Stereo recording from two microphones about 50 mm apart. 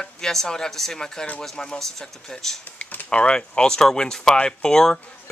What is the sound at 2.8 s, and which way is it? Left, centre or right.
Typing, left.